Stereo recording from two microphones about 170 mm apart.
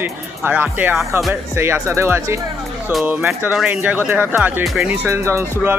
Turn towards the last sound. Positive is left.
turn(degrees=-15)  # may be behind; listen again after turning